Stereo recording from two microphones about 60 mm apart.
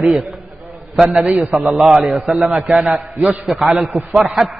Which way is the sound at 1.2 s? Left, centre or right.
Right.